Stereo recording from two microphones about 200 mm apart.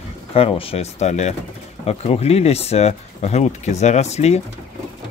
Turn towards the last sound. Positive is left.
turn(degrees=35)  # may be behind; listen again after turning